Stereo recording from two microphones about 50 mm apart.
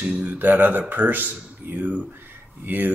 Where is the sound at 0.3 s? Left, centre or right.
Right.